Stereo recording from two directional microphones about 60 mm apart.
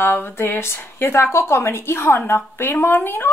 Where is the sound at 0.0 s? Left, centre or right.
Left.